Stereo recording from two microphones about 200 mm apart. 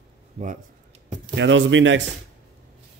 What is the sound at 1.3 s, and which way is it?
Speech, 65° right (ahead or behind).